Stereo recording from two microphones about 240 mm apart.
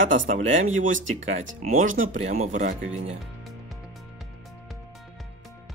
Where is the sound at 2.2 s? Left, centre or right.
Right.